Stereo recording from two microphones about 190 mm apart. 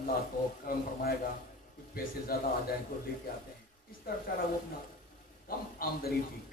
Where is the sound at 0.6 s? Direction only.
50° left (ahead or behind).